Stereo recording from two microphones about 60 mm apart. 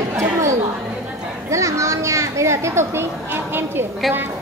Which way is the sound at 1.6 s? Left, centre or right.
Right.